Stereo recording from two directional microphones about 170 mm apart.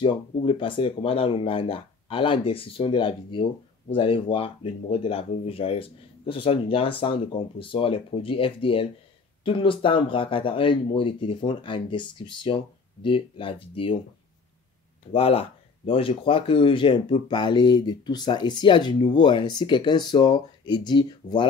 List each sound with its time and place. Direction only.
0.0 s speech: 30° left (ahead or behind)
15.1 s speech: 35° left (ahead or behind)